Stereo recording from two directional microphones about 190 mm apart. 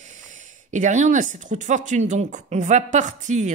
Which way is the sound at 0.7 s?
40° right (ahead or behind).